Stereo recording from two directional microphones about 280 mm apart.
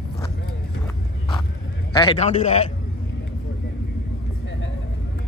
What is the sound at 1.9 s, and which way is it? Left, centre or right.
Speech, centre.